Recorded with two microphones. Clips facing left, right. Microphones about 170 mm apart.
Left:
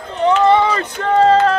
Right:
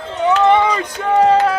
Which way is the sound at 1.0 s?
10° right (ahead or behind).